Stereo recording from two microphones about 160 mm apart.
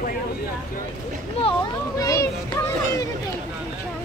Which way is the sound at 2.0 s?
20° left (ahead or behind).